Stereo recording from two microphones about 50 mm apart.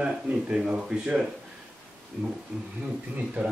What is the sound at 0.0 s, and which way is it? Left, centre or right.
Speech, right.